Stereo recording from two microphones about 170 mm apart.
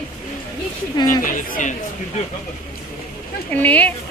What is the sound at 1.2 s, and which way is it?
Speech, 50° left (ahead or behind).